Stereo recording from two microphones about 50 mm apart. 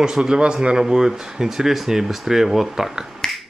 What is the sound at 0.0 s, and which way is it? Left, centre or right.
Speech, centre.